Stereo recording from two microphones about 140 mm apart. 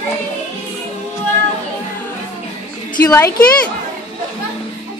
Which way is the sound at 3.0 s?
20° left (ahead or behind).